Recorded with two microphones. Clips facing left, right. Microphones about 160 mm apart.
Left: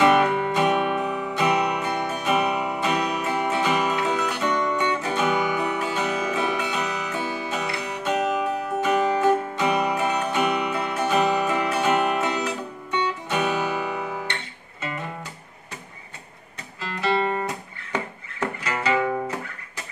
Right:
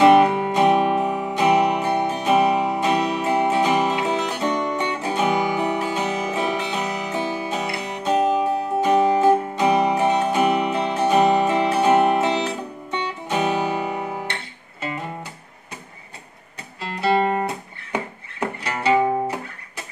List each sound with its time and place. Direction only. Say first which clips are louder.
0.0 s music: right 5 dB; 25° right (ahead or behind)
16.8 s music: right 4 dB; 30° right (ahead or behind)
18.6 s music: right 5 dB; 30° right (ahead or behind)